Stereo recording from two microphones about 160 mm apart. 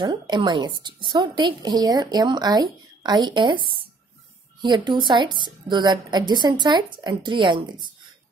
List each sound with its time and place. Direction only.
0.0 s a woman's voice: 25° right (ahead or behind)